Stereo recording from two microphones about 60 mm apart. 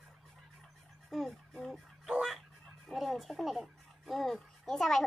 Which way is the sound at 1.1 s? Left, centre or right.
Centre.